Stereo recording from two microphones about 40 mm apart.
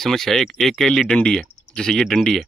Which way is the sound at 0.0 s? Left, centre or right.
Centre.